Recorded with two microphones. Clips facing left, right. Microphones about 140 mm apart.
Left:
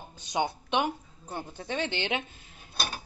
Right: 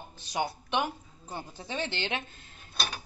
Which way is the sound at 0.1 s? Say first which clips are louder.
Left 3 dB; 20° left (ahead or behind).